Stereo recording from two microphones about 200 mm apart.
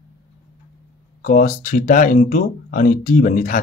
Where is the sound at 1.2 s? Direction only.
40° left (ahead or behind).